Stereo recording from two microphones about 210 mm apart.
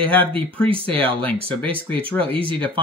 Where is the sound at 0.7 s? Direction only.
25° right (ahead or behind).